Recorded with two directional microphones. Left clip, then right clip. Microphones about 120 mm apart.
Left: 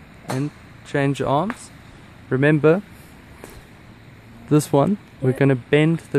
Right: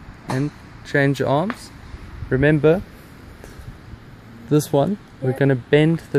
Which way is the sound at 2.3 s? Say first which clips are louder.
Even; 25° left (ahead or behind).